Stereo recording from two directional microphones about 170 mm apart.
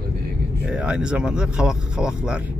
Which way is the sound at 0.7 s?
5° right (ahead or behind).